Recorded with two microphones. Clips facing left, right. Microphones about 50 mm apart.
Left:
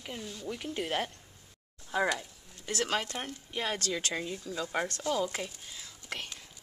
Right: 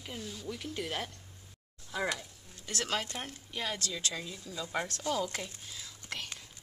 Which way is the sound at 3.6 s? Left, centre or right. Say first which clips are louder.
Left 3 dB; left.